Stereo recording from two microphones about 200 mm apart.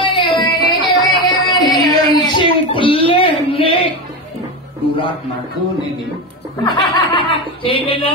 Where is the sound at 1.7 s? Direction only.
20° left (ahead or behind).